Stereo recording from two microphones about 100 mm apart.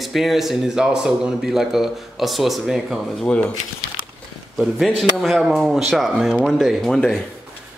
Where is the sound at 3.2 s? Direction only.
10° left (ahead or behind).